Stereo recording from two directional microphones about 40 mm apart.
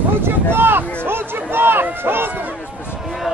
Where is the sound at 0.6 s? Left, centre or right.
Right.